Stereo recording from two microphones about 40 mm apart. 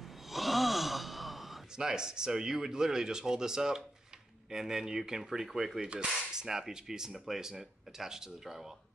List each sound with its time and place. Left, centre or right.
0.3 s a sound: centre
1.8 s speech: centre
5.8 s speech: right
6.3 s speech: centre